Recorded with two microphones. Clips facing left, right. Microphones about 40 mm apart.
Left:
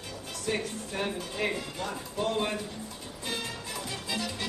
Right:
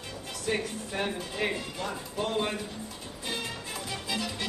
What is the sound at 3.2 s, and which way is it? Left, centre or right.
Music, centre.